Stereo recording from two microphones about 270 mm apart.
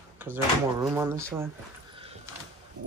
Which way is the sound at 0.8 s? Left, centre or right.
Centre.